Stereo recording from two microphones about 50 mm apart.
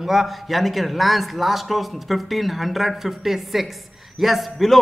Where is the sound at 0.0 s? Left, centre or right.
Centre.